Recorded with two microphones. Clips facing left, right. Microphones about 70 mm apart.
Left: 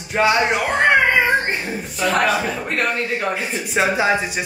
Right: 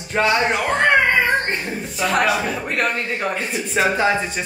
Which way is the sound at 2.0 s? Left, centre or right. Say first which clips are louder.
Left 1 dB; centre.